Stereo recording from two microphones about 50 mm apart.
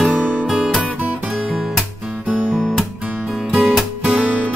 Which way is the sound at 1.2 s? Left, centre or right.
Centre.